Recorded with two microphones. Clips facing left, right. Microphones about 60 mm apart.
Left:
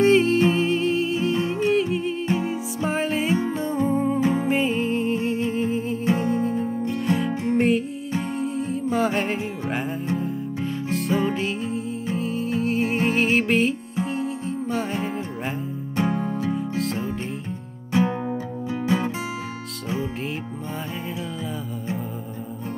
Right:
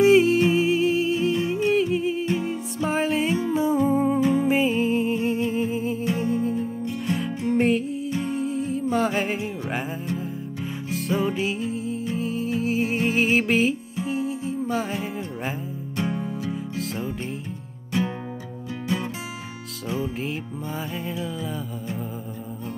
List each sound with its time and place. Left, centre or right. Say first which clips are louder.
0.0 s music: right 1 dB; centre
4.2 s music: right 1 dB; left
4.5 s music: right 1 dB; centre
7.5 s music: even; centre
16.2 s music: left 4 dB; left
16.5 s music: left 4 dB; centre